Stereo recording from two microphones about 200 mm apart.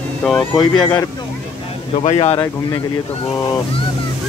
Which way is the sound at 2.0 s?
30° left (ahead or behind).